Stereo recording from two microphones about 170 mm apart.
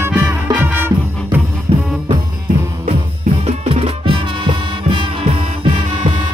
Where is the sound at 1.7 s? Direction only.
35° right (ahead or behind).